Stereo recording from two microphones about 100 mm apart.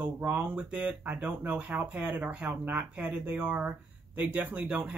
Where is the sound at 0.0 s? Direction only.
20° right (ahead or behind).